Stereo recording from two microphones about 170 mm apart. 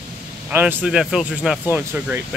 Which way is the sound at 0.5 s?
10° right (ahead or behind).